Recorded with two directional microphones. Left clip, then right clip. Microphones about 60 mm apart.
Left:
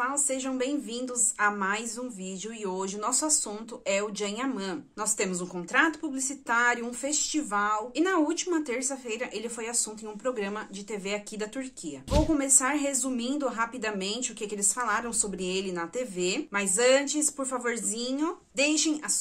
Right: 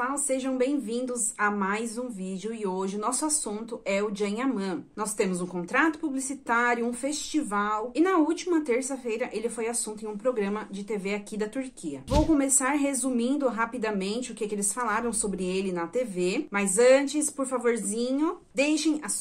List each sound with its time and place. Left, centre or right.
0.0 s a woman's voice: left
12.1 s a woman's voice: centre
12.4 s a woman's voice: left